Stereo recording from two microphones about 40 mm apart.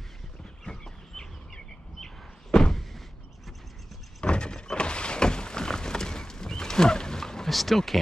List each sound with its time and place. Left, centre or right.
0.7 s chicken: centre
4.2 s a sound: left
7.4 s speech: centre